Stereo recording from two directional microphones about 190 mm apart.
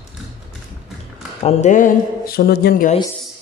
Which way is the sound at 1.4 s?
40° left (ahead or behind).